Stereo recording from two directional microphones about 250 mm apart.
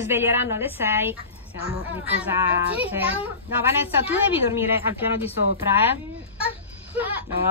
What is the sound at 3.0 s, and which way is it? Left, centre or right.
Speech, left.